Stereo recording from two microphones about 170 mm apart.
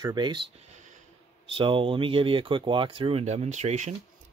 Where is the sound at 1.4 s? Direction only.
30° right (ahead or behind).